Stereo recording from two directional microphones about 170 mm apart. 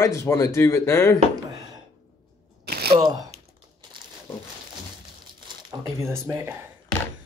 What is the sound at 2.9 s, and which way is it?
Speech, 20° right (ahead or behind).